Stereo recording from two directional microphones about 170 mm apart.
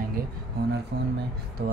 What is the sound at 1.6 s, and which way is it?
Speech, 65° right (ahead or behind).